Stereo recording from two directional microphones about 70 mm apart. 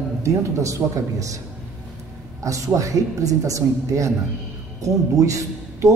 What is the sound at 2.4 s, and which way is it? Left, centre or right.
A man's voice, right.